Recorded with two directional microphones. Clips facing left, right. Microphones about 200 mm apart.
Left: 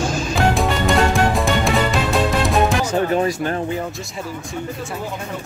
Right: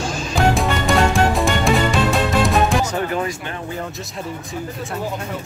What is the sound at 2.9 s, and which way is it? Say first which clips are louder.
Music: left 4 dB; 25° left (ahead or behind).